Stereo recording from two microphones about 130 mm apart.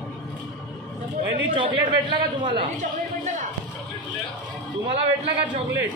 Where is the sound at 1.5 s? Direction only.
40° right (ahead or behind).